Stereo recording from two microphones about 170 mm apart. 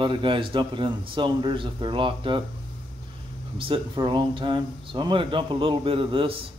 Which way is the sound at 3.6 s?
30° right (ahead or behind).